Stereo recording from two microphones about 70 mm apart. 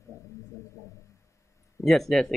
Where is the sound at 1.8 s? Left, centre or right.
Centre.